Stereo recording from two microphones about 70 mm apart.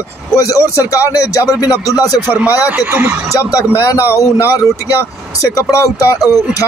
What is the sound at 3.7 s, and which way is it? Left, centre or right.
Speech, left.